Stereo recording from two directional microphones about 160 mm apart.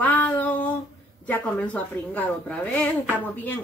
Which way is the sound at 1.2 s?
10° left (ahead or behind).